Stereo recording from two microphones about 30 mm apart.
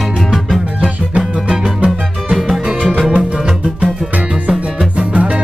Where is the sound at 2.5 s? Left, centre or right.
Right.